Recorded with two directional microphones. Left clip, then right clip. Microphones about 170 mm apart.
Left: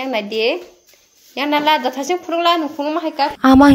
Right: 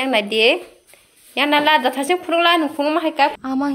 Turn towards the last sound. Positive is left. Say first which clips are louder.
# left 13 dB
turn(degrees=60)  # may be behind; listen again after turning